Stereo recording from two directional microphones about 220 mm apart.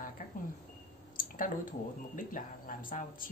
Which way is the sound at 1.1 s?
40° left (ahead or behind).